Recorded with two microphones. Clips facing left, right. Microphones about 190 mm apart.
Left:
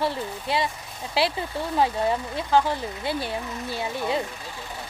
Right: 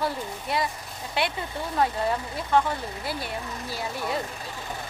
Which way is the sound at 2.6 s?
25° left (ahead or behind).